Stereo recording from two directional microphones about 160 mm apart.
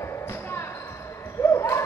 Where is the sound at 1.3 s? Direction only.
15° left (ahead or behind).